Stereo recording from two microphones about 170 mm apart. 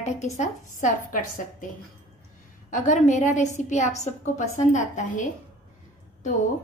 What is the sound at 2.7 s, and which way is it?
A woman's voice, 50° left (ahead or behind).